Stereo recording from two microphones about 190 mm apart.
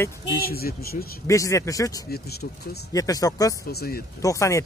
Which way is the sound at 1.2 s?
15° left (ahead or behind).